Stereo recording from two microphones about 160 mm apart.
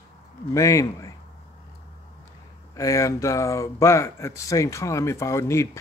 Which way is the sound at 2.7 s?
20° left (ahead or behind).